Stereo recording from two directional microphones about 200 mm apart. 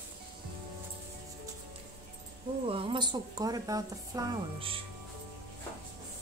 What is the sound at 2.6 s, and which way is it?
A woman's voice, 25° right (ahead or behind).